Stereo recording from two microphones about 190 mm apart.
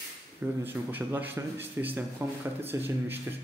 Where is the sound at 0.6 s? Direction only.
10° right (ahead or behind).